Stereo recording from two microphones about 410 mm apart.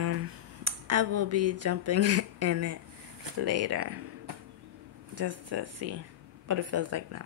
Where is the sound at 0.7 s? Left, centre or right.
Right.